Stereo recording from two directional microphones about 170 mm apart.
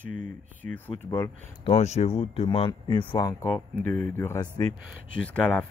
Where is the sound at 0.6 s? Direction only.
10° left (ahead or behind).